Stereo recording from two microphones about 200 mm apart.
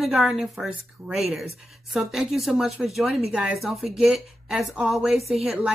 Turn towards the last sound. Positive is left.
turn(degrees=-5)  # may be behind; listen again after turning